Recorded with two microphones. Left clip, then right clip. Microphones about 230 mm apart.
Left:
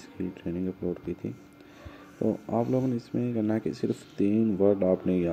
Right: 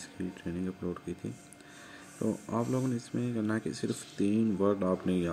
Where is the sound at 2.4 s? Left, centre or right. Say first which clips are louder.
Left 5 dB; centre.